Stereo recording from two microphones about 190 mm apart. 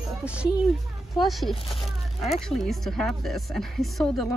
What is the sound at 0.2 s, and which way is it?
A woman's voice, 5° right (ahead or behind).